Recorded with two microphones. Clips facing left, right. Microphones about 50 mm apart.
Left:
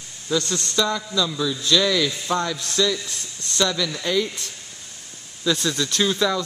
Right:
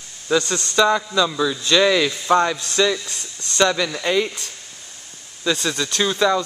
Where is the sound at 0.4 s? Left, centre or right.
Right.